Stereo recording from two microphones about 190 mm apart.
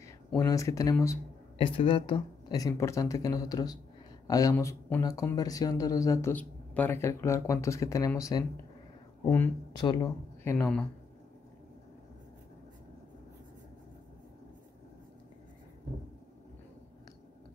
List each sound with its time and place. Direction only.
0.5 s speech: 15° left (ahead or behind)
1.6 s speech: 25° left (ahead or behind)
9.7 s speech: 20° left (ahead or behind)